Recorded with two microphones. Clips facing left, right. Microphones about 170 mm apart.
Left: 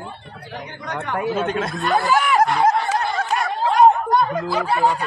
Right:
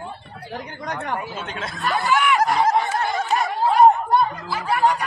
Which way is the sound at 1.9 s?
40° left (ahead or behind).